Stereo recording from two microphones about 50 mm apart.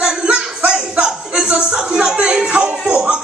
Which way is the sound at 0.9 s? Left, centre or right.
Centre.